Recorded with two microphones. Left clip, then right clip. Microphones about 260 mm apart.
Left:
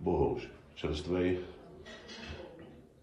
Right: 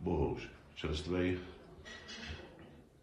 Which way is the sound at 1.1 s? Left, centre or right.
Right.